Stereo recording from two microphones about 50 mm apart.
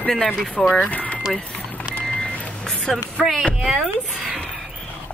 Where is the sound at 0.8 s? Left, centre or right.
Left.